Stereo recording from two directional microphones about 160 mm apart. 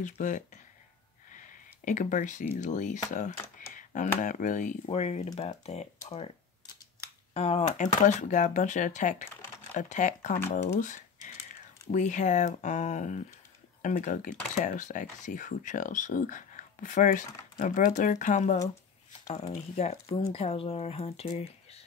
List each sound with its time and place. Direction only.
0.0 s speech: 50° left (ahead or behind)
3.7 s computer keyboard: 50° left (ahead or behind)
4.2 s speech: 50° left (ahead or behind)
4.8 s speech: 40° left (ahead or behind)
7.3 s speech: 40° left (ahead or behind)
10.8 s typing: 50° left (ahead or behind)
11.9 s speech: 50° left (ahead or behind)